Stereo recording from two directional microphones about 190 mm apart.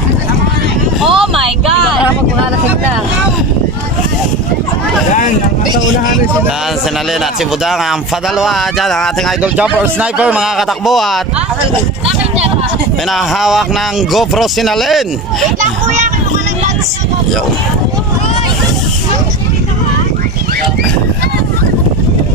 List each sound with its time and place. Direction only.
1.0 s a sound: centre (ahead or behind)
8.4 s a man's voice: centre (ahead or behind)
13.4 s speech: centre (ahead or behind)
15.6 s children playing: 40° right (ahead or behind)